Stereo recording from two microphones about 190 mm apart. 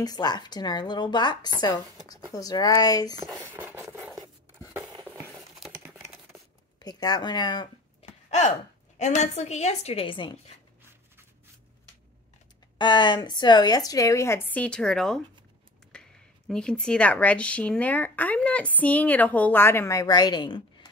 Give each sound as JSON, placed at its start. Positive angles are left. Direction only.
{"t": 0.0, "sound": "a woman's voice", "side_deg": 20}
{"t": 3.2, "sound": "a sound", "side_deg": -10}
{"t": 5.6, "sound": "computer keyboard", "side_deg": -5}
{"t": 6.8, "sound": "speech", "side_deg": 20}
{"t": 8.3, "sound": "a woman's voice", "side_deg": 35}
{"t": 10.8, "sound": "writing", "side_deg": -10}
{"t": 12.7, "sound": "a woman's voice", "side_deg": 25}